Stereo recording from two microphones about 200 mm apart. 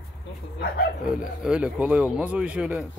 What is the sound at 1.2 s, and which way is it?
A man's voice, 5° right (ahead or behind).